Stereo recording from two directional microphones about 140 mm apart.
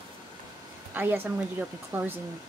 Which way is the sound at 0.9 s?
15° right (ahead or behind).